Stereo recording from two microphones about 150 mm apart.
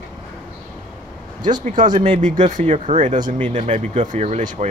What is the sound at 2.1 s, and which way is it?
Speech, 55° right (ahead or behind).